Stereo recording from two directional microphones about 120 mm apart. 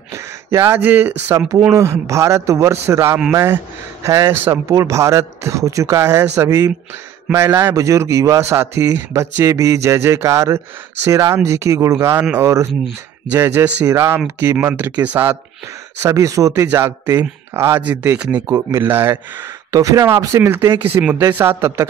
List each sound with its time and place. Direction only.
0.1 s a man's voice: 25° right (ahead or behind)
18.5 s a man's voice: 20° right (ahead or behind)